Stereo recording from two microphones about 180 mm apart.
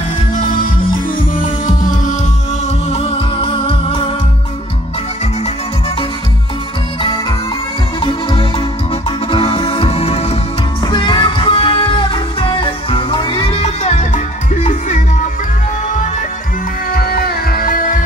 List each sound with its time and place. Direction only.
0.5 s music: 50° left (ahead or behind)
2.9 s music: 30° left (ahead or behind)
7.0 s music: 25° left (ahead or behind)
10.8 s music: 25° left (ahead or behind); by 16.3 s 40° left (ahead or behind)
16.9 s music: 55° left (ahead or behind)